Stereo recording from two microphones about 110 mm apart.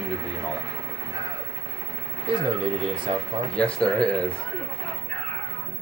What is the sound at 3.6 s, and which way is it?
Speech, 10° left (ahead or behind).